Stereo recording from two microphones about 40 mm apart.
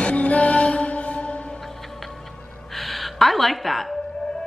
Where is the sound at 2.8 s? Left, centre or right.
Centre.